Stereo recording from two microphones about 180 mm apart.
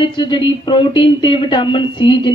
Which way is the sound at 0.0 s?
25° left (ahead or behind).